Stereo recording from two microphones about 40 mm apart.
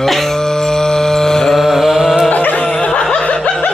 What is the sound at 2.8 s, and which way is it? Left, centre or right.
Snicker, left.